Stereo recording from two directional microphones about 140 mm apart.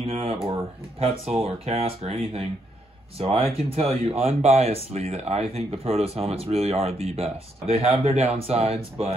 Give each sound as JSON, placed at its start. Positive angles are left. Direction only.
{"t": 0.0, "sound": "speech", "side_deg": -45}